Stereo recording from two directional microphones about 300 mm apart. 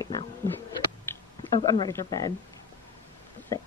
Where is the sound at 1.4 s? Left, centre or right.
Centre.